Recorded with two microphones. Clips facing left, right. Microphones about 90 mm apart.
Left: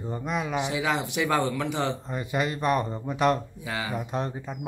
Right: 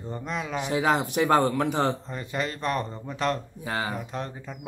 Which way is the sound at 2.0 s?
10° left (ahead or behind).